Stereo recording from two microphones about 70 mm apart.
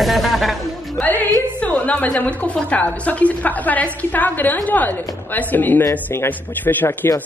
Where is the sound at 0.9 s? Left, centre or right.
Left.